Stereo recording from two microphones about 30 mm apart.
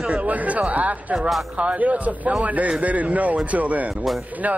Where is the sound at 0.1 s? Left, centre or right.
Right.